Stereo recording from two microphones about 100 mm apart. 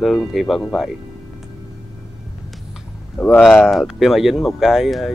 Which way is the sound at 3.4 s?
Centre (ahead or behind).